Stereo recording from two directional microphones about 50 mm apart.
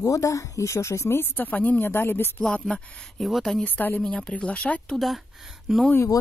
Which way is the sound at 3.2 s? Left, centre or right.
Centre.